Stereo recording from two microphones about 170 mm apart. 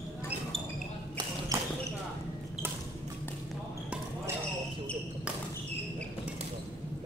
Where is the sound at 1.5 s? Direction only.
20° right (ahead or behind).